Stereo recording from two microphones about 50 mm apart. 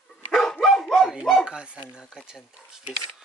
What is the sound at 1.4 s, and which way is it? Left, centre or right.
Speech, centre.